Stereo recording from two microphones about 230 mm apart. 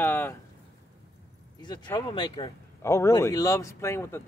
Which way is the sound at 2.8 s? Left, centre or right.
Centre.